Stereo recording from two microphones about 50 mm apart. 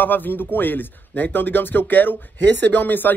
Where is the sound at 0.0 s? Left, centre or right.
Left.